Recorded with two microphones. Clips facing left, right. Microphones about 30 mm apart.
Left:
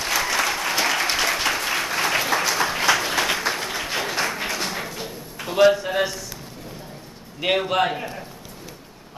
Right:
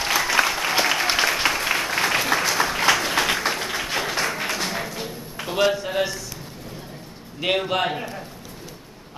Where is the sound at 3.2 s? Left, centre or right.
Centre.